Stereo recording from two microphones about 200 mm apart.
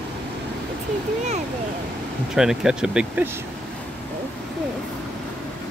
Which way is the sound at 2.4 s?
5° right (ahead or behind).